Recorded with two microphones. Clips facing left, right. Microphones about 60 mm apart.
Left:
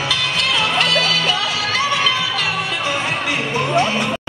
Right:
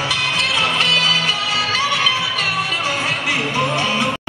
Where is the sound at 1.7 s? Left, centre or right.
Left.